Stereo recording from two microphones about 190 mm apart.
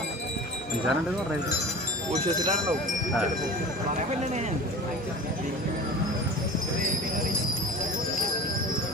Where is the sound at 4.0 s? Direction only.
35° right (ahead or behind).